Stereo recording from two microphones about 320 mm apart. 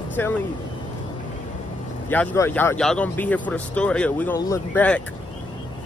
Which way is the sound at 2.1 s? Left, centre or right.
Centre.